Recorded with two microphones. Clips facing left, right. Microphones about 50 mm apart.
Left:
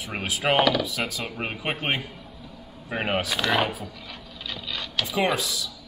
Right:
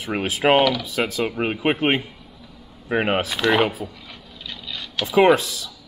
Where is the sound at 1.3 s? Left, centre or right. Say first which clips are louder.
Right 8 dB; right.